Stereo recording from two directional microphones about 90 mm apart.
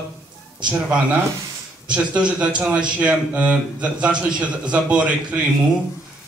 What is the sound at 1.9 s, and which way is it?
A man's voice, 15° right (ahead or behind).